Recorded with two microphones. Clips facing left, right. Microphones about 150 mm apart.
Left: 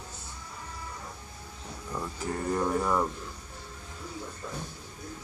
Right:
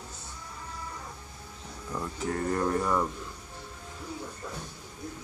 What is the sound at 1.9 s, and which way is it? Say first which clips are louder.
Speech: right 2 dB; 5° left (ahead or behind).